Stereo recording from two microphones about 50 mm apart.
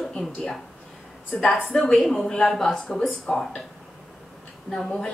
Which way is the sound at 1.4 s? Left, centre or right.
Centre.